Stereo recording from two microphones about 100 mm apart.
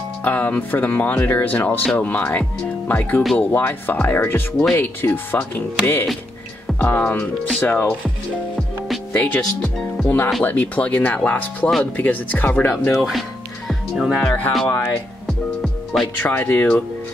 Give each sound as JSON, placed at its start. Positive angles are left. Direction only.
{"t": 0.2, "sound": "speech", "side_deg": 15}
{"t": 8.5, "sound": "music", "side_deg": 0}
{"t": 9.1, "sound": "speech", "side_deg": 15}
{"t": 12.9, "sound": "speech", "side_deg": 0}
{"t": 13.7, "sound": "music", "side_deg": 0}
{"t": 14.2, "sound": "speech", "side_deg": 15}
{"t": 15.2, "sound": "music", "side_deg": 0}
{"t": 16.2, "sound": "speech", "side_deg": 20}